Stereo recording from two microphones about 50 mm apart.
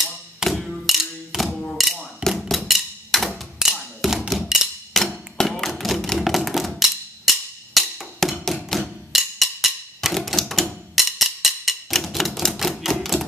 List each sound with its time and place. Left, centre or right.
0.4 s music: centre
1.8 s mechanisms: centre
2.5 s wood block: centre
3.5 s music: centre
4.3 s a sound: centre
4.9 s hammer: centre
5.4 s tap: centre
6.1 s wood block: centre
10.1 s typewriter: centre
11.0 s music: centre
12.5 s typewriter: centre